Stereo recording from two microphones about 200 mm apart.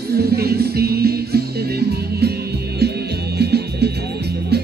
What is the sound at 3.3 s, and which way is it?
Music, 55° right (ahead or behind).